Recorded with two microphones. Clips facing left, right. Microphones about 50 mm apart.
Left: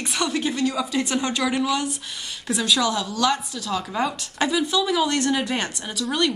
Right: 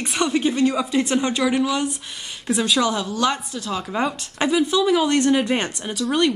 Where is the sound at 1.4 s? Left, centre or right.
Centre.